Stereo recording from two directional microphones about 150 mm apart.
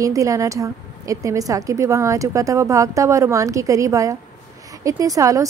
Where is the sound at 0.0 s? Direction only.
20° right (ahead or behind).